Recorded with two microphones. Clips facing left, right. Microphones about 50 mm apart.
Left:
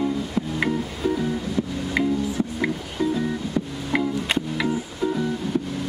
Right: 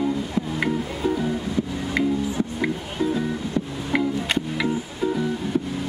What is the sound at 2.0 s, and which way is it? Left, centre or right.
Music, centre.